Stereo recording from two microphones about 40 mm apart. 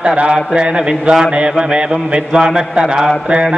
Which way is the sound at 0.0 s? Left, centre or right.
Right.